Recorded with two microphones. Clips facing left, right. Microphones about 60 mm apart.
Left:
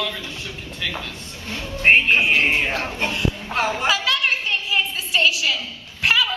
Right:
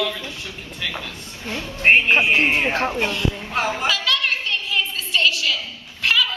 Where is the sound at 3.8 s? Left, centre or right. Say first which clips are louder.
Left 1 dB; centre.